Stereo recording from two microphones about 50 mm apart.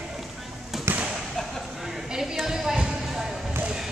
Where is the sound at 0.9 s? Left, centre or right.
Right.